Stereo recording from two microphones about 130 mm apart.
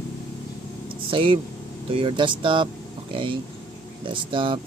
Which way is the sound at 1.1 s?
40° right (ahead or behind).